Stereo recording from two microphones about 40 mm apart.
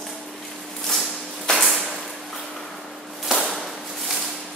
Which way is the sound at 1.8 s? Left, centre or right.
Centre.